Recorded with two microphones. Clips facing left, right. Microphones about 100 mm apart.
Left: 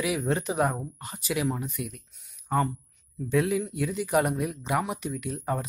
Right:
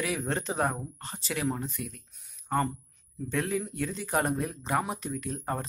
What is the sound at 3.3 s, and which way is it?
Speech, 15° left (ahead or behind).